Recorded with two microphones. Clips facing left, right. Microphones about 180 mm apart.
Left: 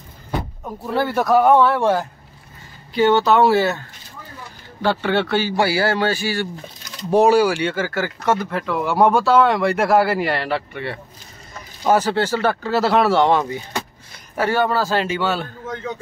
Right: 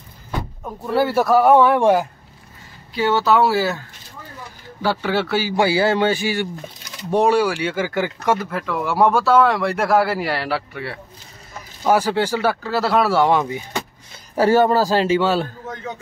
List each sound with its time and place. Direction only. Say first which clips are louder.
0.9 s speech: right 1 dB; 5° right (ahead or behind)
2.9 s speech: left 2 dB; centre (ahead or behind)
4.8 s speech: left 1 dB; 5° right (ahead or behind)
5.6 s speech: right 3 dB; 20° right (ahead or behind)
7.1 s speech: left 2 dB; 5° left (ahead or behind)
7.6 s speech: even; 10° right (ahead or behind)
8.4 s speech: left 1 dB; centre (ahead or behind)
14.3 s a man's voice: right 4 dB; 35° right (ahead or behind)